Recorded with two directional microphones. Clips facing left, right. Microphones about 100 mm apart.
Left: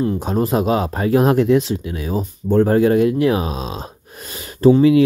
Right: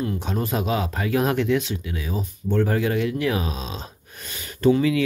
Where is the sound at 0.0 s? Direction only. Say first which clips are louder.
Left 7 dB; 35° left (ahead or behind).